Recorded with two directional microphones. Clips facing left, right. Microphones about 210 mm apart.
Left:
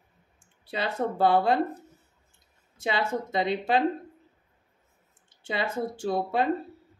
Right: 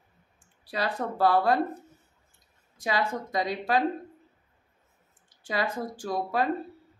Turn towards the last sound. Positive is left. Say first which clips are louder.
# left 2 dB
turn(degrees=25)  # may be behind; listen again after turning